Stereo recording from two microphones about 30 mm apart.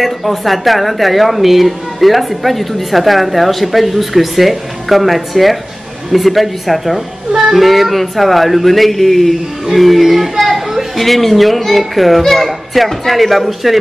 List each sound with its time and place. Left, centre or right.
0.0 s speech: centre
11.0 s speech: centre
12.2 s speech: centre